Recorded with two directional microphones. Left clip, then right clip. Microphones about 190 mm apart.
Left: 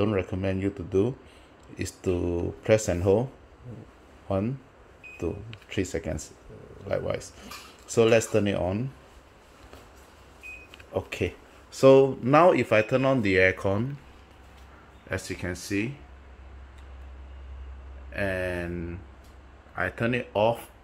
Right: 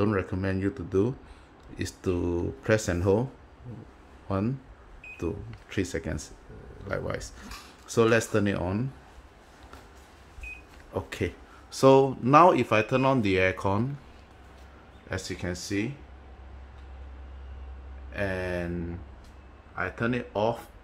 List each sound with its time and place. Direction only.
0.0 s speech: centre (ahead or behind)
5.1 s speech: centre (ahead or behind)
10.9 s speech: centre (ahead or behind)
15.0 s speech: 10° left (ahead or behind)
18.1 s speech: 10° left (ahead or behind)
19.7 s speech: 15° left (ahead or behind)